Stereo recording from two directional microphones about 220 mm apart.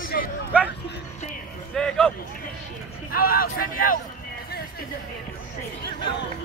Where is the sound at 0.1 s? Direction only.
45° left (ahead or behind).